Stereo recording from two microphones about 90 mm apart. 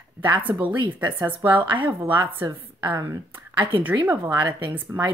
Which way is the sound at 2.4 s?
40° right (ahead or behind).